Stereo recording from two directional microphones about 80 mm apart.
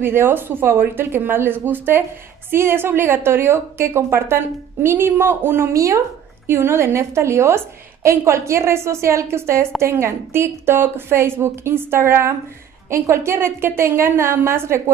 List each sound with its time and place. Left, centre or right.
0.0 s a woman's voice: right